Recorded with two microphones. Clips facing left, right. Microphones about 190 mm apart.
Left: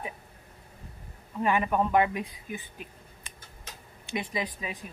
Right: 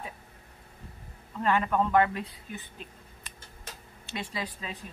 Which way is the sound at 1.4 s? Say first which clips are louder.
Even; 15° left (ahead or behind).